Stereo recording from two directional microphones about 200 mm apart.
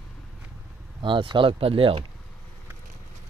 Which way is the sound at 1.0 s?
25° right (ahead or behind).